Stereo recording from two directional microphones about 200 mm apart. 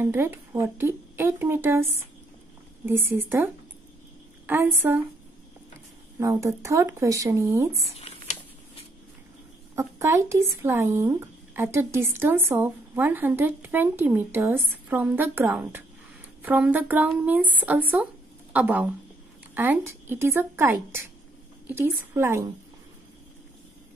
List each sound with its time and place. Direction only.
0.0 s speech: 10° right (ahead or behind)
4.5 s speech: 10° right (ahead or behind)
6.1 s speech: 15° right (ahead or behind)
8.0 s a sound: 35° left (ahead or behind)
9.8 s speech: 15° right (ahead or behind)